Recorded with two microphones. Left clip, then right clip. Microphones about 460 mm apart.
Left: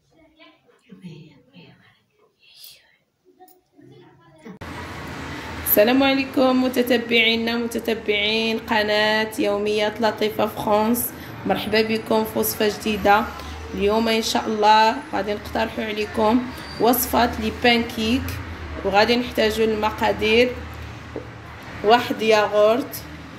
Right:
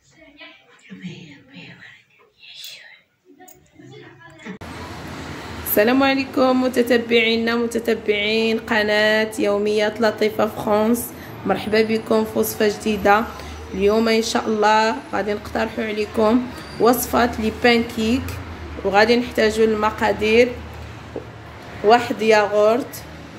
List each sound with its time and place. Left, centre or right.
5.7 s speech: centre
21.8 s speech: centre